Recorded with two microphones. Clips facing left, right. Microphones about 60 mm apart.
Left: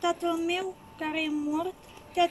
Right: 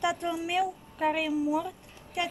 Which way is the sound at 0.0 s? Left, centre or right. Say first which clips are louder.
Left 2 dB; centre.